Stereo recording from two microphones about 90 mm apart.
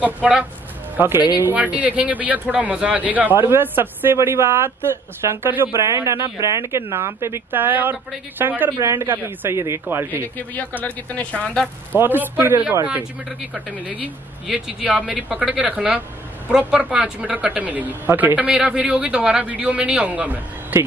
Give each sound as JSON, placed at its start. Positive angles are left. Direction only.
{"t": 0.0, "sound": "speech", "side_deg": -15}
{"t": 0.9, "sound": "speech", "side_deg": -25}
{"t": 1.4, "sound": "speech", "side_deg": -15}
{"t": 10.2, "sound": "a man's voice", "side_deg": 20}
{"t": 12.0, "sound": "speech", "side_deg": -25}